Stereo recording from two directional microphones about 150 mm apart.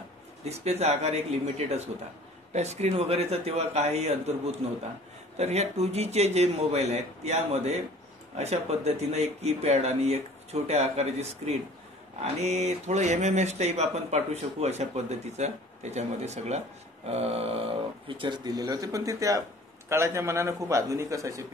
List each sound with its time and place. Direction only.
0.5 s a man's voice: 45° right (ahead or behind); by 21.5 s 20° right (ahead or behind)